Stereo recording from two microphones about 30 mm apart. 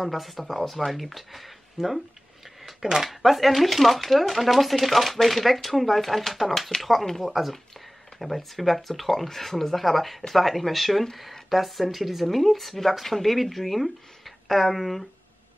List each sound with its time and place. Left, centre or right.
0.0 s speech: centre
3.1 s speech: centre